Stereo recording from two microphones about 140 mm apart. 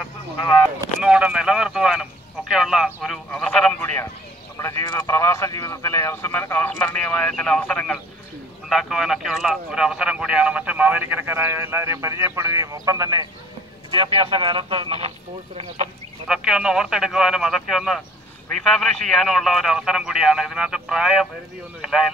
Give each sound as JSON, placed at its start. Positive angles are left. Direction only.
{"t": 1.0, "sound": "a man's voice", "side_deg": -5}
{"t": 13.9, "sound": "speech", "side_deg": -35}
{"t": 16.3, "sound": "a man's voice", "side_deg": -5}